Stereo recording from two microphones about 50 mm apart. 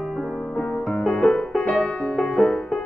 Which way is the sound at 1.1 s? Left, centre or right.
Left.